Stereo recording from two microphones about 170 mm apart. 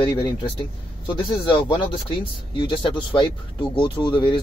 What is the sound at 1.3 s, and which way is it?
Speech, 30° left (ahead or behind).